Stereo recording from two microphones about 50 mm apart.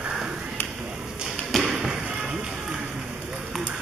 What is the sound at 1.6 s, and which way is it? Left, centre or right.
Basketball bounce, centre.